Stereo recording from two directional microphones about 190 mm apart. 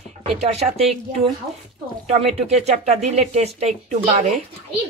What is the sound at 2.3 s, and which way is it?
Speech, 35° right (ahead or behind).